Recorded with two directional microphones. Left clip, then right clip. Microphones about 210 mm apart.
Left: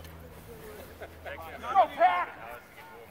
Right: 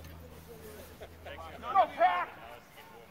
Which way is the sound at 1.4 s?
30° right (ahead or behind).